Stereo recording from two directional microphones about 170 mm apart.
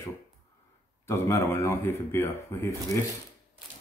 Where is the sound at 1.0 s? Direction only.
15° left (ahead or behind).